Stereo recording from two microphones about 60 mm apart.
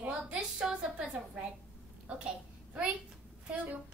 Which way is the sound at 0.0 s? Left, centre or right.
Centre.